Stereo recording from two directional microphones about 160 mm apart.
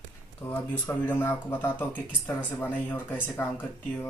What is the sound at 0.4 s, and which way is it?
Speech, 10° left (ahead or behind).